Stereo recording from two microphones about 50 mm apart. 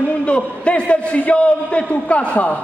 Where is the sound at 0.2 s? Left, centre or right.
Left.